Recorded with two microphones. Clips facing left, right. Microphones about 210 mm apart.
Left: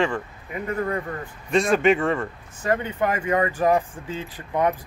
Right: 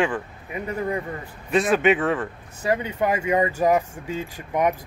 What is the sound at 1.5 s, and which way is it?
Speech, 5° right (ahead or behind).